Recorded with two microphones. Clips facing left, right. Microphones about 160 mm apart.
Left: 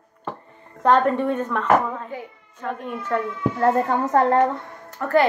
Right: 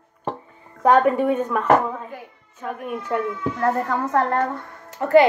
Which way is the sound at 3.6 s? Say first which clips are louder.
Left 3 dB; 25° left (ahead or behind).